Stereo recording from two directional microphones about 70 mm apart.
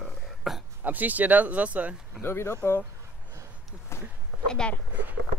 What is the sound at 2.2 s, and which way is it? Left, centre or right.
Speech, left.